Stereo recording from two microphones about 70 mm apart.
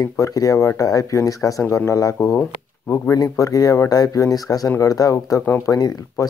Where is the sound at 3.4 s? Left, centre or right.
Left.